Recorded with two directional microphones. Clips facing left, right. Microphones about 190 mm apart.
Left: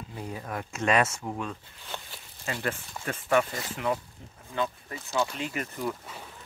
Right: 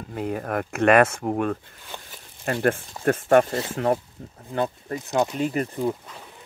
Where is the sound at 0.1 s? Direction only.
60° right (ahead or behind); by 5.9 s 35° right (ahead or behind).